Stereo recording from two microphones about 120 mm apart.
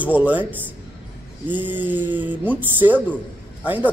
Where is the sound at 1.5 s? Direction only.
15° right (ahead or behind).